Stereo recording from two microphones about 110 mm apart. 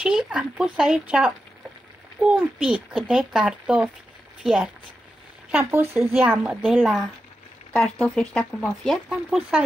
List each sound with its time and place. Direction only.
0.0 s a child's voice: 5° right (ahead or behind)
5.5 s a child's voice: 20° right (ahead or behind)
6.4 s speech: centre (ahead or behind)
9.1 s a child's voice: 5° right (ahead or behind)